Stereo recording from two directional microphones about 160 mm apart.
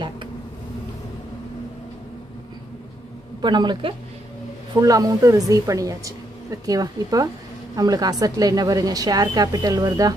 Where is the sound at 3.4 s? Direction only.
30° right (ahead or behind).